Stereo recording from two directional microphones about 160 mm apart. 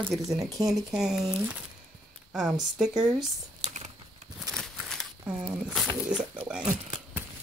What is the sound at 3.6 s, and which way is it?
Typing, 45° right (ahead or behind).